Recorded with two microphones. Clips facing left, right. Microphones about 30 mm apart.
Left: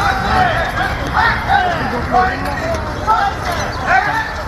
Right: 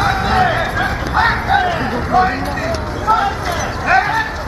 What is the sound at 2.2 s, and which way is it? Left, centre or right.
Vehicle, centre.